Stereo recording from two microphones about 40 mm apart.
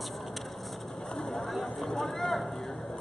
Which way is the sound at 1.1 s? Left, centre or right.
Centre.